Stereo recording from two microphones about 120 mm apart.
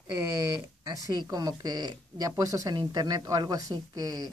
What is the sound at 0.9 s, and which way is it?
Speech, 30° right (ahead or behind).